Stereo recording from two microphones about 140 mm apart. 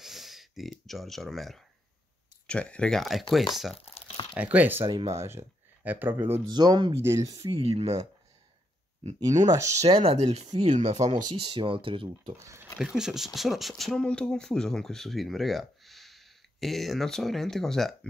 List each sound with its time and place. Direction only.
0.0 s a sound: centre (ahead or behind)
2.4 s speech: 10° left (ahead or behind)
3.7 s crumpling: 45° left (ahead or behind)
4.4 s speech: 10° right (ahead or behind)
6.5 s speech: 30° right (ahead or behind)
7.3 s speech: 45° right (ahead or behind)
9.2 s speech: 25° right (ahead or behind)
9.8 s speech: 50° right (ahead or behind)
11.4 s speech: 40° right (ahead or behind)
12.7 s speech: 5° right (ahead or behind)